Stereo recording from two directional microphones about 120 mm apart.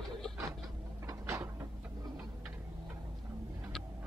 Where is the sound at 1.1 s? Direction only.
25° right (ahead or behind).